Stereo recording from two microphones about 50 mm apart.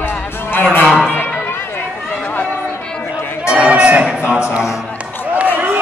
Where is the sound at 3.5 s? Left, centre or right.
Right.